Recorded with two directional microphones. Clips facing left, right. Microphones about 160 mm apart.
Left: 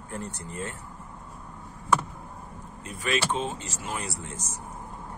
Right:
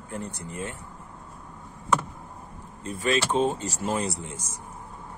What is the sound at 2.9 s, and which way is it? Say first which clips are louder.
Speech: right 3 dB; 35° right (ahead or behind).